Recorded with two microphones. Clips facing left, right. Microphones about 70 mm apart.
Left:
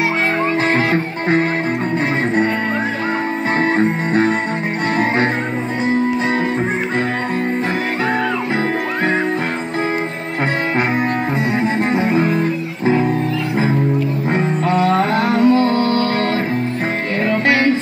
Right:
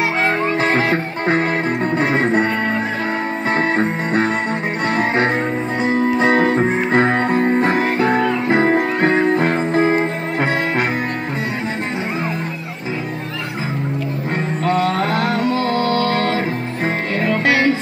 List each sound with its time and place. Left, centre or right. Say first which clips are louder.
6.1 s music: right 3 dB; right
7.6 s music: right 3 dB; right
14.3 s music: left 1 dB; centre
17.2 s music: left 1 dB; centre